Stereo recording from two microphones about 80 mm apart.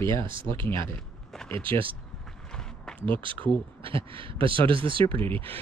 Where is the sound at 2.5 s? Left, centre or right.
Centre.